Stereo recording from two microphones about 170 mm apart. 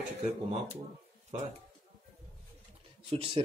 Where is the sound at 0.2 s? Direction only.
35° right (ahead or behind).